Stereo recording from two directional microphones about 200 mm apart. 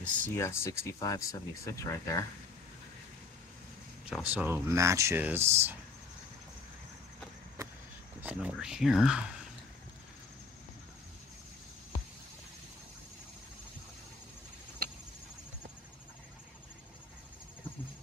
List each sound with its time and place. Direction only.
0.0 s speech: 10° left (ahead or behind)
4.1 s speech: 5° right (ahead or behind)
8.2 s speech: 5° right (ahead or behind)